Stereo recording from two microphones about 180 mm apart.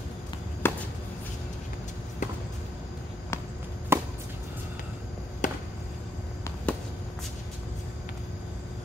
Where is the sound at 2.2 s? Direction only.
45° left (ahead or behind).